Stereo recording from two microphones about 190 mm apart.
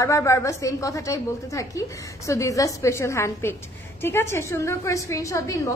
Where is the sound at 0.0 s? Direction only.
15° left (ahead or behind).